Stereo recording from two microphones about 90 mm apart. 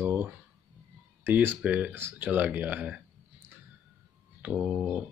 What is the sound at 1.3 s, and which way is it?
Speech, 25° right (ahead or behind).